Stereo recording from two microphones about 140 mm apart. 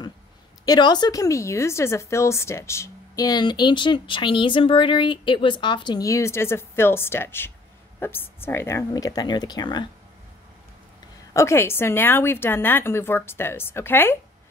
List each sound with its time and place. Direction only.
0.7 s a woman's voice: 30° left (ahead or behind)
11.3 s a woman's voice: 20° left (ahead or behind)